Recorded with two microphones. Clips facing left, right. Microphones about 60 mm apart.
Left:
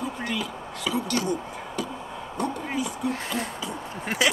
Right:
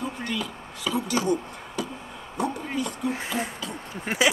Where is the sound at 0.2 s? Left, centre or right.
Centre.